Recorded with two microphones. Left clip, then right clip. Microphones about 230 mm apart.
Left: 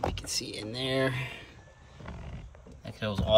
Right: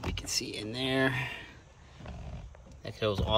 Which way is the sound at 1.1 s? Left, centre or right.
Centre.